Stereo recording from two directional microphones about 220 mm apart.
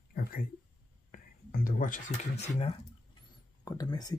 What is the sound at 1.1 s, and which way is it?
Speech, 40° left (ahead or behind).